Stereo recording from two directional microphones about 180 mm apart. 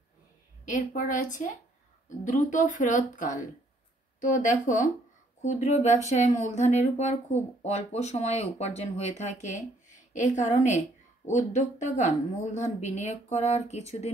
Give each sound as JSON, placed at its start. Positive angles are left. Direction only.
{"t": 0.7, "sound": "speech", "side_deg": 45}